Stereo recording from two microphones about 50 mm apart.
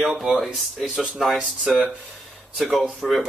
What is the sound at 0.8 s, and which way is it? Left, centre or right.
Speech, centre.